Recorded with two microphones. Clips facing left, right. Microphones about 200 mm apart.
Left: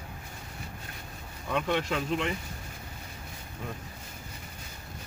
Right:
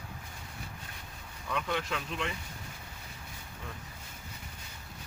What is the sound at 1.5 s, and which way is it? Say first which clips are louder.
Speech: left 5 dB; 25° left (ahead or behind).